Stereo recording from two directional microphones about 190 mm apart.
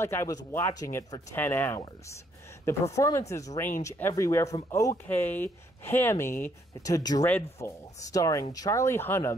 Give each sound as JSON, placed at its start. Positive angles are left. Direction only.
{"t": 0.0, "sound": "speech", "side_deg": 15}
{"t": 2.9, "sound": "speech", "side_deg": 15}